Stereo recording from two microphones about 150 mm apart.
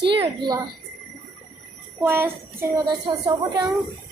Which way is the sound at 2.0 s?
15° right (ahead or behind).